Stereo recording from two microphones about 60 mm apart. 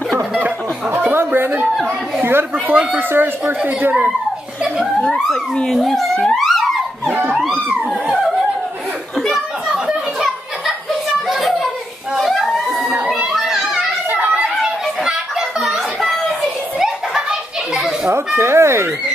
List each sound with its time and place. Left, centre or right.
1.1 s a sound: right
2.2 s a child's voice: right
5.0 s speech: centre
7.3 s music: centre
9.7 s a sound: centre
11.2 s a sound: centre
13.3 s children playing: centre
14.1 s children playing: right
14.4 s chatter: centre
15.6 s children playing: centre
18.1 s speech: right